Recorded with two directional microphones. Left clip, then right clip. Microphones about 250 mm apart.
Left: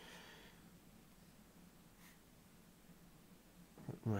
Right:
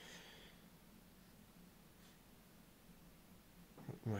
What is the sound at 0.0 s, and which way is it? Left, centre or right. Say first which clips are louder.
Snort: even; centre.